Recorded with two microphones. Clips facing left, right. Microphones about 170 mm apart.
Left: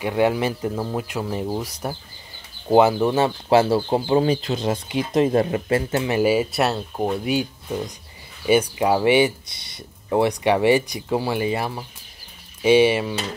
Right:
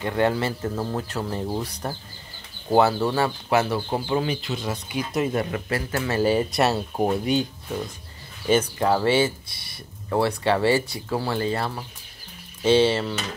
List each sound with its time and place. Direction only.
0.0 s speech: 10° left (ahead or behind); by 7.2 s 5° right (ahead or behind)
7.2 s speech: 10° left (ahead or behind)